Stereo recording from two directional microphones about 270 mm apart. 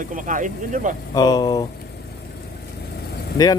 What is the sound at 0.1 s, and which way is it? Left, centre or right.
Speech, right.